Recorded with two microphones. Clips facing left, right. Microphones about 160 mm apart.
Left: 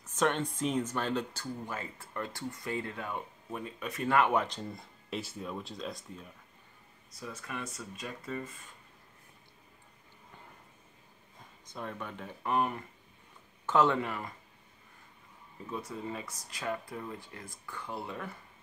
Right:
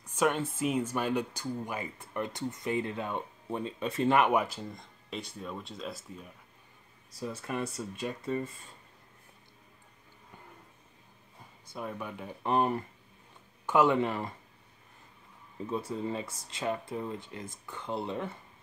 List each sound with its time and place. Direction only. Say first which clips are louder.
0.0 s speech: right 1 dB; 10° right (ahead or behind)
4.7 s speech: left 2 dB; 5° left (ahead or behind)
7.1 s speech: right 6 dB; 30° right (ahead or behind)
11.6 s speech: right 2 dB; 10° right (ahead or behind)
12.4 s speech: right 3 dB; 30° right (ahead or behind)
13.7 s speech: right 2 dB; 10° right (ahead or behind)
13.9 s speech: right 5 dB; 30° right (ahead or behind)
15.7 s speech: right 5 dB; 30° right (ahead or behind)